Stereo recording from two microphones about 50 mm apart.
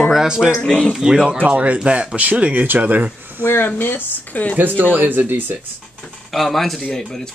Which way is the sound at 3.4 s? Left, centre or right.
Left.